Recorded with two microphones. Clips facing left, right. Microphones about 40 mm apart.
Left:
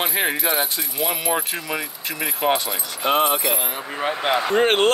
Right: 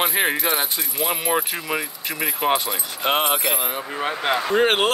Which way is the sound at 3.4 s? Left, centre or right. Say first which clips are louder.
Even; centre.